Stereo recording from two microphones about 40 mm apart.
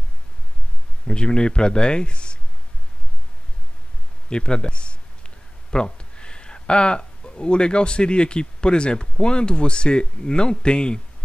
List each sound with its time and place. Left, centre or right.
1.0 s speech: left
4.3 s speech: left